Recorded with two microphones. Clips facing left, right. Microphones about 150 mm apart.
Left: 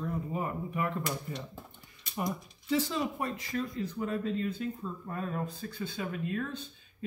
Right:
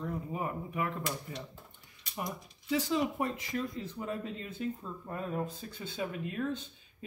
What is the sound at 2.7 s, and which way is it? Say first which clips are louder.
Speech: even; 20° right (ahead or behind).